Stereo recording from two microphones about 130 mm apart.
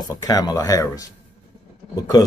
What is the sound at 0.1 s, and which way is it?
Speech, 30° left (ahead or behind).